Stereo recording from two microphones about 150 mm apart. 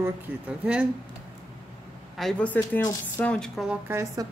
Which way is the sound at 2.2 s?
5° left (ahead or behind).